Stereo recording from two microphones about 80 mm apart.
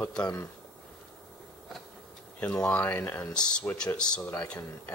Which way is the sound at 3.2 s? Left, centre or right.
Centre.